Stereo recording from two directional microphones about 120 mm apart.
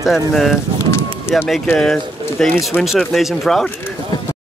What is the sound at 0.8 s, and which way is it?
Run, 20° left (ahead or behind).